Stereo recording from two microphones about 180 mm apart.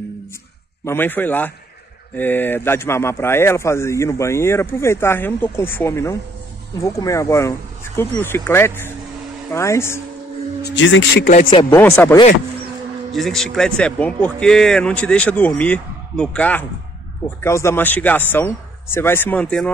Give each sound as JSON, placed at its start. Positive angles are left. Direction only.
{"t": 0.8, "sound": "speech", "side_deg": 10}
{"t": 10.6, "sound": "speech", "side_deg": 90}
{"t": 11.7, "sound": "speech", "side_deg": 15}
{"t": 13.1, "sound": "speech", "side_deg": 0}